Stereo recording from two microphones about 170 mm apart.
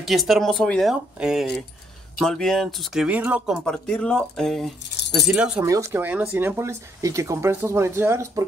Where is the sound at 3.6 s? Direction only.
5° left (ahead or behind); by 8.4 s 15° right (ahead or behind).